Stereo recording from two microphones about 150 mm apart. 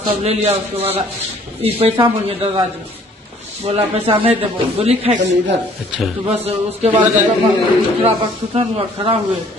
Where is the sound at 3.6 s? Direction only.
40° right (ahead or behind).